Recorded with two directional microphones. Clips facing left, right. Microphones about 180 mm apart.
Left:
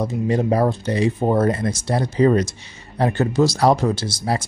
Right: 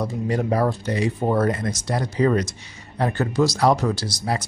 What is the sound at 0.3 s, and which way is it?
Speech, 25° left (ahead or behind).